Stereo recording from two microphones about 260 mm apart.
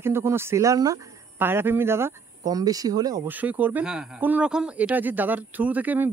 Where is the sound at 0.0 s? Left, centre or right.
Centre.